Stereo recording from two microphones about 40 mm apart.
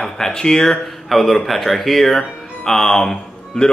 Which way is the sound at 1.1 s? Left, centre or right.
Centre.